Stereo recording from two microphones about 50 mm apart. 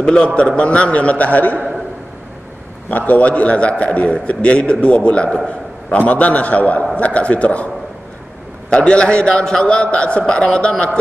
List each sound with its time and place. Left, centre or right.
0.0 s a man's voice: centre
2.9 s a man's voice: left
8.6 s a man's voice: centre